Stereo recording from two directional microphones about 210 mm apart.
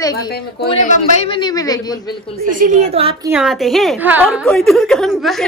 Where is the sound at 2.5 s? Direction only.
40° right (ahead or behind).